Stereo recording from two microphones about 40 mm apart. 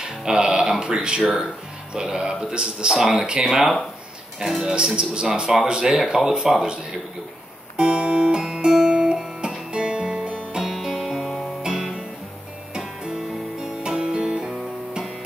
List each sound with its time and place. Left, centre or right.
0.2 s speech: centre
3.4 s speech: centre
4.4 s speech: centre
4.6 s speech: centre
7.7 s music: right
10.6 s music: centre